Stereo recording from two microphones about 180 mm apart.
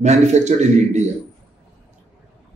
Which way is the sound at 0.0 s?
40° right (ahead or behind).